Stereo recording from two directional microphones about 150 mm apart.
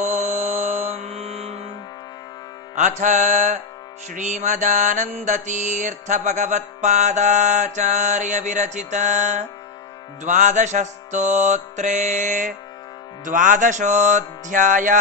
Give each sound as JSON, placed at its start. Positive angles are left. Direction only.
{"t": 0.0, "sound": "music", "side_deg": -50}
{"t": 2.7, "sound": "mantra", "side_deg": -55}
{"t": 13.2, "sound": "music", "side_deg": -60}